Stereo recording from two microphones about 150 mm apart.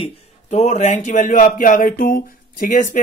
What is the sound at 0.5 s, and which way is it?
Speech, 50° left (ahead or behind).